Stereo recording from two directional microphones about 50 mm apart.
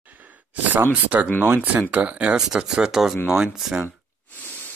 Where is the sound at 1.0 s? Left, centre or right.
Right; by 3.8 s centre.